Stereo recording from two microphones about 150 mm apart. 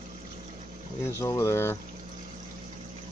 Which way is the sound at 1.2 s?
20° left (ahead or behind).